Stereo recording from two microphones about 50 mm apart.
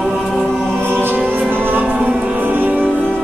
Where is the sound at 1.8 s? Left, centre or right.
Right.